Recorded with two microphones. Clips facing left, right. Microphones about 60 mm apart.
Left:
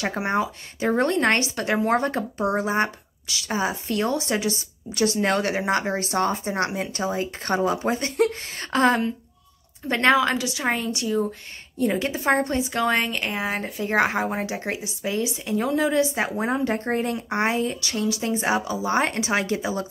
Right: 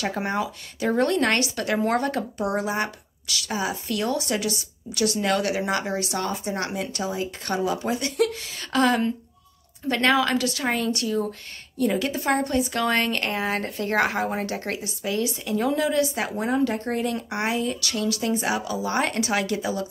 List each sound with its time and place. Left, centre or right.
0.4 s speech: left
15.5 s speech: centre
15.8 s speech: left